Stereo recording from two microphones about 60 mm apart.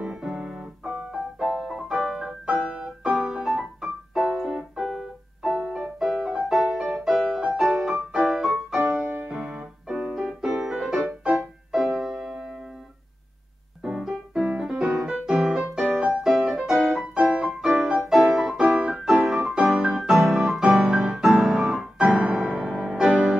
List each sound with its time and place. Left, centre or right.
0.0 s piano: centre
2.6 s music: centre
3.8 s keyboard: centre
6.5 s music: centre
9.3 s keyboard: centre
9.8 s music: centre
13.8 s keyboard: centre
14.3 s music: centre
22.2 s music: centre